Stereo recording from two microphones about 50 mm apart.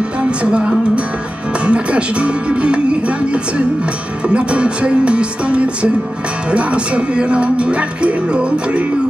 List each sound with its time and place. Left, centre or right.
0.4 s music: right
4.3 s music: right